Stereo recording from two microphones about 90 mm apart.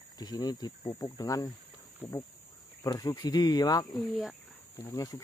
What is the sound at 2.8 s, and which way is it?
Speech, 45° left (ahead or behind).